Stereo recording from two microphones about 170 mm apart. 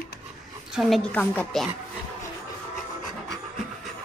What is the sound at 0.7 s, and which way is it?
Speech, centre (ahead or behind).